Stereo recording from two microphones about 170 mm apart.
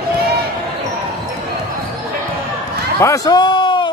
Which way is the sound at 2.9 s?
20° left (ahead or behind).